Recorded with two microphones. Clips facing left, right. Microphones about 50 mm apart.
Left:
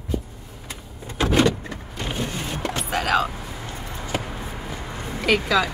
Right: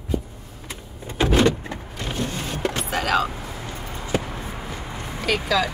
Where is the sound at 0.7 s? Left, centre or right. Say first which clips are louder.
Right 1 dB; right.